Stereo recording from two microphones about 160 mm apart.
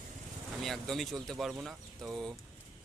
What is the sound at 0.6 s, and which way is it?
Speech, centre (ahead or behind).